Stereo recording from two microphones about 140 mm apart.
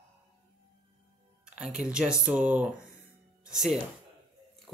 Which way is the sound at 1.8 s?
5° right (ahead or behind).